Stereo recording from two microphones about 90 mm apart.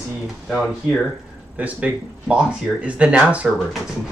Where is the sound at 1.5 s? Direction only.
15° right (ahead or behind).